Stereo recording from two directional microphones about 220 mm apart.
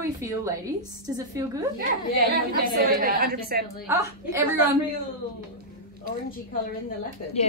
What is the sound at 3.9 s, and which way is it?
Speech, 15° right (ahead or behind).